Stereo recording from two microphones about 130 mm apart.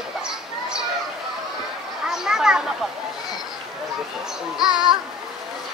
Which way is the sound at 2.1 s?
5° right (ahead or behind).